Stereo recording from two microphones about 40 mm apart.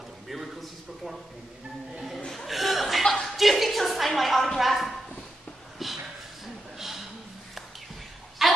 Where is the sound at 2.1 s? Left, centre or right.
Centre.